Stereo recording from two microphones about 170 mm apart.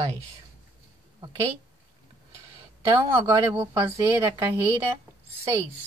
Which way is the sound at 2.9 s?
15° right (ahead or behind).